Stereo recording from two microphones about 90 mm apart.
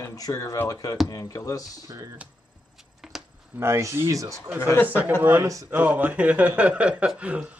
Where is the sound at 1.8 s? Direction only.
40° right (ahead or behind).